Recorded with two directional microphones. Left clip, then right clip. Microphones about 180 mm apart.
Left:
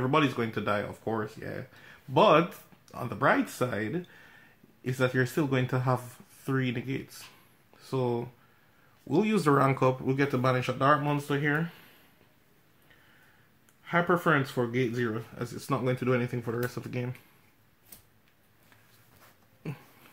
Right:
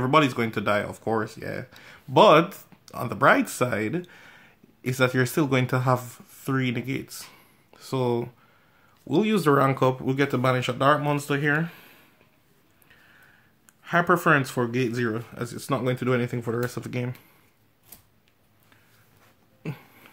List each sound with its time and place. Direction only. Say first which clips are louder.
0.0 s speech: right 6 dB; 35° right (ahead or behind)
9.0 s speech: right 4 dB; 25° right (ahead or behind)
13.8 s speech: right 5 dB; 35° right (ahead or behind)
19.6 s a sound: right 5 dB; 25° right (ahead or behind)